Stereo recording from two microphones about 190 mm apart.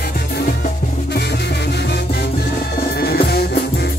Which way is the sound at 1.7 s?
60° left (ahead or behind).